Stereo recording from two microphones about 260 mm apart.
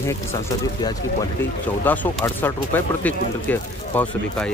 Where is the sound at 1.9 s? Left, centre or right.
Centre.